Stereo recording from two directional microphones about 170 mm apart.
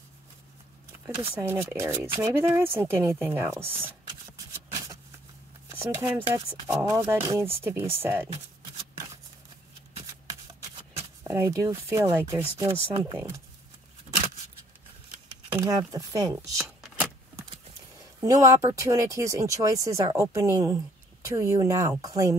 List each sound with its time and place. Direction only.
1.3 s speech: 10° right (ahead or behind)
5.7 s speech: 10° right (ahead or behind)
11.0 s speech: 15° right (ahead or behind)
15.5 s speech: 20° right (ahead or behind)
16.5 s shuffling cards: 5° right (ahead or behind)
18.2 s speech: 20° right (ahead or behind)